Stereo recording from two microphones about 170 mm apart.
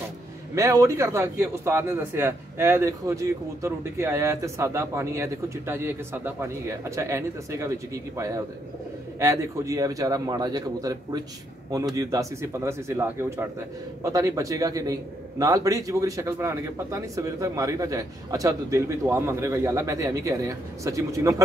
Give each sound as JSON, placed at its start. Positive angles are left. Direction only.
{"t": 0.6, "sound": "a man's voice", "side_deg": -20}